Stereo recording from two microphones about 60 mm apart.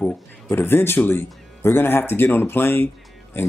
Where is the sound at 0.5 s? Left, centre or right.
Left.